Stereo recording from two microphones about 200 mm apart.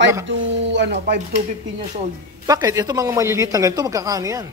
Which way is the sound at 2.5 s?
15° right (ahead or behind).